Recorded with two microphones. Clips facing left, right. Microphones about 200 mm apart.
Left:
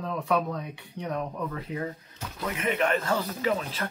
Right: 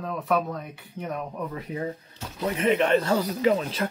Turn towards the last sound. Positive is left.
turn(degrees=-25)  # may be behind; listen again after turning